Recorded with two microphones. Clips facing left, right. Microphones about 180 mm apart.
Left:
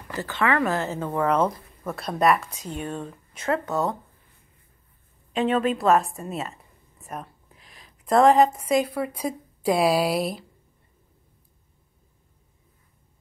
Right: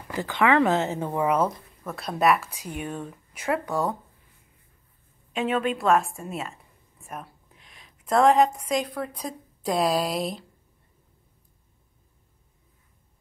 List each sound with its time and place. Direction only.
0.1 s speech: 15° right (ahead or behind)
5.3 s a woman's voice: centre (ahead or behind)